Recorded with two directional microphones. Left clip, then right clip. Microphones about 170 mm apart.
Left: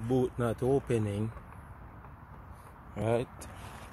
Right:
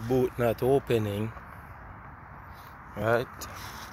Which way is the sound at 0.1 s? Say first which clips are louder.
Right 5 dB; 10° left (ahead or behind).